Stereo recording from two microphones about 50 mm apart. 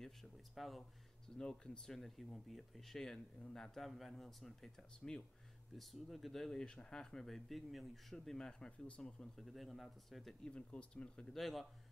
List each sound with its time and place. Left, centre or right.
0.0 s a man's voice: centre
1.4 s a man's voice: centre
9.4 s a man's voice: centre
10.4 s speech: left
11.3 s a man's voice: centre